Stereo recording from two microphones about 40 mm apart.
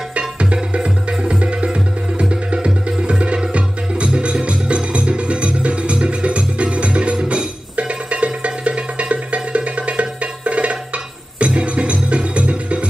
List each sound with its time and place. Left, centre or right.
0.4 s music: right